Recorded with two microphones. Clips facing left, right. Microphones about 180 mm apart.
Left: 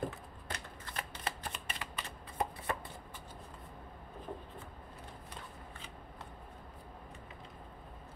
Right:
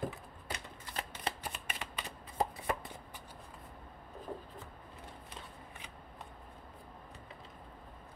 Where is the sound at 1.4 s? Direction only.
10° right (ahead or behind).